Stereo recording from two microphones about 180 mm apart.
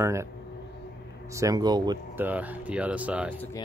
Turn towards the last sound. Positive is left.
turn(degrees=-10)  # may be behind; listen again after turning